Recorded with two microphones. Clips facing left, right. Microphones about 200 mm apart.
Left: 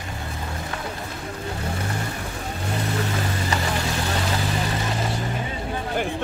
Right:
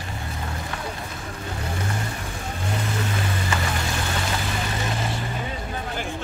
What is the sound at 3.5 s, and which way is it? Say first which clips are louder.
Vehicle: left 1 dB; 35° left (ahead or behind).